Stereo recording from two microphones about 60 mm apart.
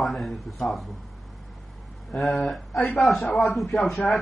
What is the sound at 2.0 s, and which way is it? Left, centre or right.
A man's voice, centre.